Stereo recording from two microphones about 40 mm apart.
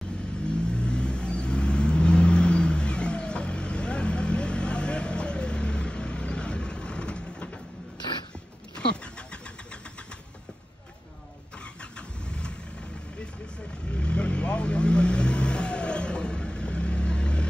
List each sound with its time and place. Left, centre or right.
0.7 s vehicle: left
8.7 s vehicle: left
11.8 s vehicle: left
13.9 s vehicle: left